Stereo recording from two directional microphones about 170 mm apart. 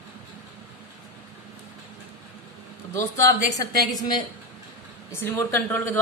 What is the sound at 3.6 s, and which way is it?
Speech, 25° left (ahead or behind).